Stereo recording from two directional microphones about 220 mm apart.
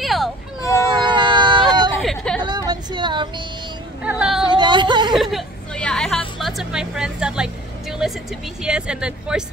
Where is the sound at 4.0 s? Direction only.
5° right (ahead or behind).